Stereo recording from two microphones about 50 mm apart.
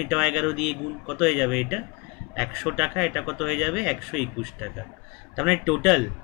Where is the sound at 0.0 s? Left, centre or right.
Centre.